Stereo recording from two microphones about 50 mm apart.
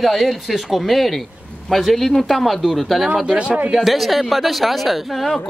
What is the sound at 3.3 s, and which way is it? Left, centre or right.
Speech, right.